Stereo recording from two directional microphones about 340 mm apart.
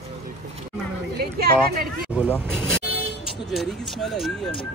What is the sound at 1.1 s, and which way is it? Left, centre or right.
Speech, right.